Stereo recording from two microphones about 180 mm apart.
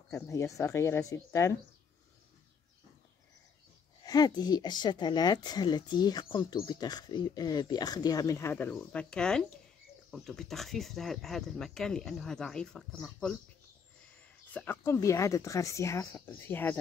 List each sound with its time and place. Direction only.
0.1 s speech: 15° left (ahead or behind)
4.0 s a woman's voice: 20° left (ahead or behind); by 13.3 s 5° left (ahead or behind)
14.5 s speech: 10° left (ahead or behind)